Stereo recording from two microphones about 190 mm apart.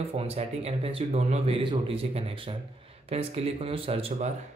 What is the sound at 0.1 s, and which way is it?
Speech, 30° right (ahead or behind).